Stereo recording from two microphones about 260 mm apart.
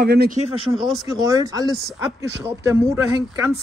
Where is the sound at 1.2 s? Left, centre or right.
Centre.